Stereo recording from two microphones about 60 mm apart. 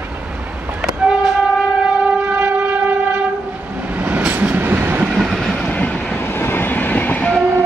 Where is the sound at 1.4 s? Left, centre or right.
Centre.